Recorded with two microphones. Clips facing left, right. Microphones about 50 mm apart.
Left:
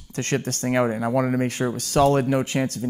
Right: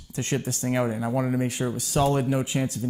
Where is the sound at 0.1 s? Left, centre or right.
Left.